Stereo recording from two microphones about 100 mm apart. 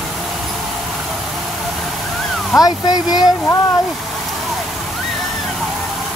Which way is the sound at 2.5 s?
40° left (ahead or behind).